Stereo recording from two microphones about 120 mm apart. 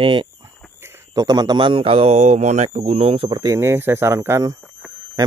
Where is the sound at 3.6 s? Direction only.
20° right (ahead or behind).